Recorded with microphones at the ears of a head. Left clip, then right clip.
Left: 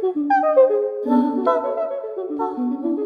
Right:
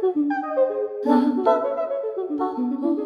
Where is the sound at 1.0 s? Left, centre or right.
Centre.